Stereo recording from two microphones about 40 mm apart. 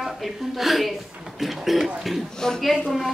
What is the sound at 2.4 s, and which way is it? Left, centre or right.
Speech, centre.